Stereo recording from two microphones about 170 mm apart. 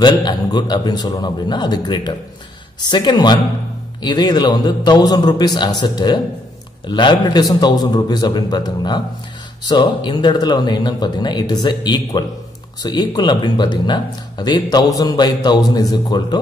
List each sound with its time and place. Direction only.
0.0 s speech: 25° left (ahead or behind)